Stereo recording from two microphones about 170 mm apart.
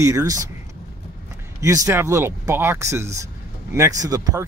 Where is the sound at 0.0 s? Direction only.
20° right (ahead or behind).